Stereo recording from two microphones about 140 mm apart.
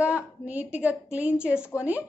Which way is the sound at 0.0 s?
10° right (ahead or behind).